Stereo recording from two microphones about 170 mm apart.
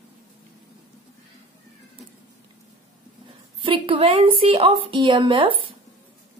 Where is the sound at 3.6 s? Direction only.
30° right (ahead or behind).